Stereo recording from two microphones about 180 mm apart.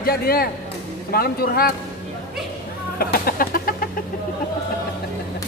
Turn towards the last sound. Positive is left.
turn(degrees=55)  # may be behind; listen again after turning